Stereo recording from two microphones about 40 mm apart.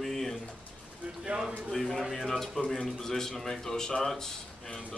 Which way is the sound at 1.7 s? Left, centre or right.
Centre.